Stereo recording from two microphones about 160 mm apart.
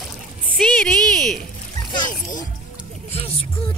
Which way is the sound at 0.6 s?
5° left (ahead or behind).